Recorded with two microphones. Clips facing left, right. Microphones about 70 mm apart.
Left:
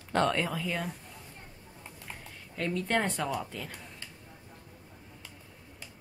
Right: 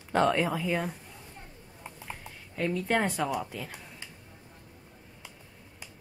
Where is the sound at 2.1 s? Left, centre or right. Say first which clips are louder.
Right 2 dB; centre.